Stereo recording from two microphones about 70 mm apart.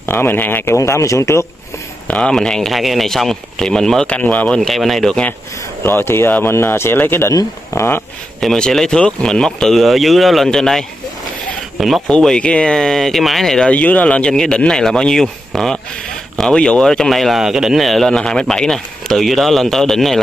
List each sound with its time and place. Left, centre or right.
0.1 s speech: left
0.7 s speech: left
2.0 s speech: centre
4.1 s speech: left
4.6 s speech: centre
5.9 s speech: left
8.4 s speech: centre
12.1 s speech: centre
13.7 s speech: left; by 20.2 s centre